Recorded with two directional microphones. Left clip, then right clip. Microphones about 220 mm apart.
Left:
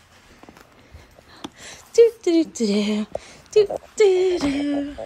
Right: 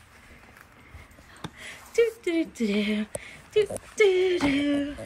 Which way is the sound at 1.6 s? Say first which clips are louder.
Left 9 dB; 10° left (ahead or behind).